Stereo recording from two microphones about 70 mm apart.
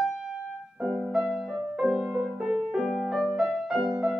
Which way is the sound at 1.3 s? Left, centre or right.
Centre.